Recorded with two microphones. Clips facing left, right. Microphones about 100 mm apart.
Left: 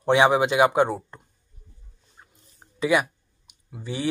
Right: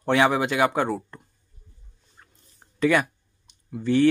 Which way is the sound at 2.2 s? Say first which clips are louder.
Left 1 dB; 15° left (ahead or behind).